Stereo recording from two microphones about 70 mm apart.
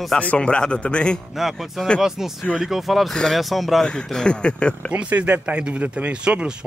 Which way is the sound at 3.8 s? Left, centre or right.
Centre.